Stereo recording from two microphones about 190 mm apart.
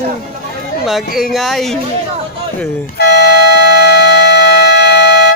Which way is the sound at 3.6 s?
60° left (ahead or behind).